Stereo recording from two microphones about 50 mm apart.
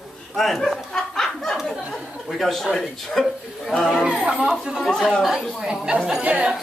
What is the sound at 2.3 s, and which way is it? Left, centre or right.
Speech, centre.